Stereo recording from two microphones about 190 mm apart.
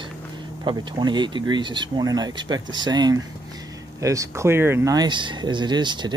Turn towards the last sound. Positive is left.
turn(degrees=-25)  # may be behind; listen again after turning